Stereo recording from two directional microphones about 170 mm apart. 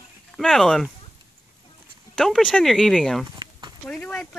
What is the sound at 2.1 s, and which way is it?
Speech, 5° left (ahead or behind).